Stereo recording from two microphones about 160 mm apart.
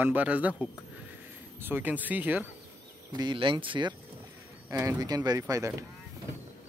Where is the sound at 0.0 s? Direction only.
10° right (ahead or behind).